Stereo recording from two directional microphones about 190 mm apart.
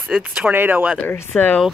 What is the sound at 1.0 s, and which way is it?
Speech, 10° left (ahead or behind).